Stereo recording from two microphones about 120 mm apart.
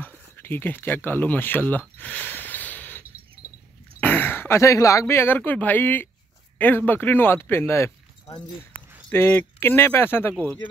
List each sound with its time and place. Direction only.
0.4 s speech: 15° left (ahead or behind)
2.0 s snort: 15° left (ahead or behind)
4.0 s speech: 15° left (ahead or behind)
9.1 s speech: 20° left (ahead or behind)